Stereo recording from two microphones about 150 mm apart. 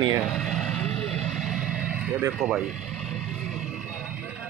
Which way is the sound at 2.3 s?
5° right (ahead or behind).